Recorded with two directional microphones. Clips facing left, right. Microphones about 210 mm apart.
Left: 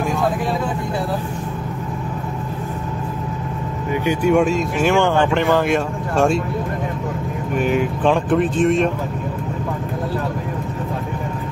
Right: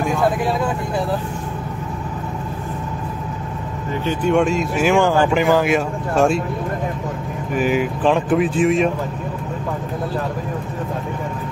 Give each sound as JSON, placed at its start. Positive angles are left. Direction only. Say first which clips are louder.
{"t": 4.0, "sound": "speech", "louder": "left 2 dB", "side_deg": 10}
{"t": 4.3, "sound": "speech", "louder": "even", "side_deg": 0}
{"t": 7.5, "sound": "speech", "louder": "even", "side_deg": 0}